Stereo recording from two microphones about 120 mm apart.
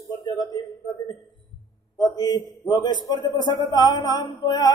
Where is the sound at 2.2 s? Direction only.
35° left (ahead or behind).